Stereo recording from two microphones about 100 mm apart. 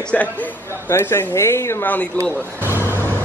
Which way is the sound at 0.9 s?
25° left (ahead or behind).